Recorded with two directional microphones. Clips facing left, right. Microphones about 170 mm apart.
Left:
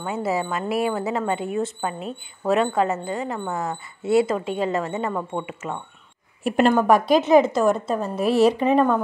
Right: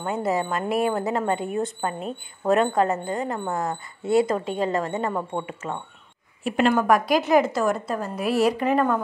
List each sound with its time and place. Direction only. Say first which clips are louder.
0.0 s a woman's voice: even; 5° left (ahead or behind)
4.5 s a woman's voice: left 1 dB; 40° right (ahead or behind)
4.7 s a woman's voice: even; 5° left (ahead or behind)
6.4 s a woman's voice: left 3 dB; 45° left (ahead or behind)
6.9 s a woman's voice: left 3 dB; 25° left (ahead or behind)